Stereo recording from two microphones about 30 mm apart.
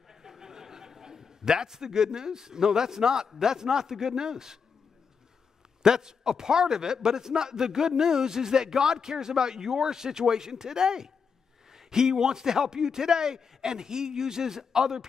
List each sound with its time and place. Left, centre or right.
0.2 s chuckle: centre
3.3 s a man's voice: centre
5.8 s a man's voice: right